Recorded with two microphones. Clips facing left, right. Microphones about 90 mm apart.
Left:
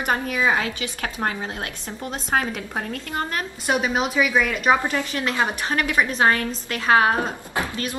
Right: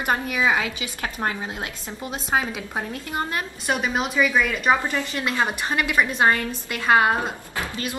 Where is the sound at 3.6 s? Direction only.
5° left (ahead or behind).